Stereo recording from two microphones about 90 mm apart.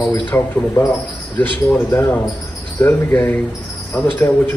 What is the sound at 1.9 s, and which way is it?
A man's voice, 30° left (ahead or behind).